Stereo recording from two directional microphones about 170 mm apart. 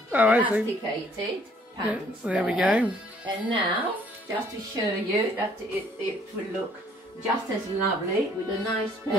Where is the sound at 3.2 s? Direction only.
30° right (ahead or behind).